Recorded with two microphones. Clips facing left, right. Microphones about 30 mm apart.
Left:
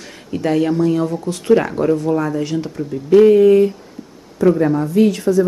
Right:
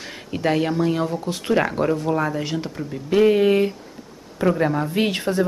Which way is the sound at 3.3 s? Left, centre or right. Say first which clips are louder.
Left 7 dB; right.